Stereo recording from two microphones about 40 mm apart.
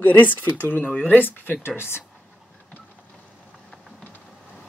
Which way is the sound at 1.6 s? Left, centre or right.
Left.